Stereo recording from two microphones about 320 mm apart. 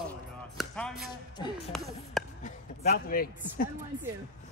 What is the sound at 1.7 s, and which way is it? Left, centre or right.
Speech, centre.